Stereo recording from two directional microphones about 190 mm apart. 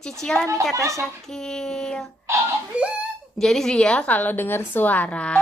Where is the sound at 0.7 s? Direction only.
15° right (ahead or behind).